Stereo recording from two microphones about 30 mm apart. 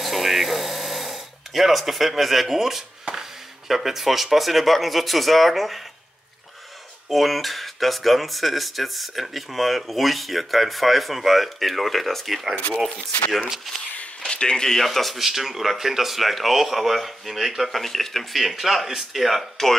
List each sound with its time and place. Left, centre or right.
0.0 s a sound: centre
3.2 s speech: centre
7.1 s speech: centre
14.3 s speech: left
14.9 s speech: centre
15.2 s speech: centre
17.6 s speech: centre
18.3 s speech: centre